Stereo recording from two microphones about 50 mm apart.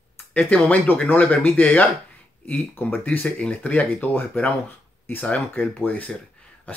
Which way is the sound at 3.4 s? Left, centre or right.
Left.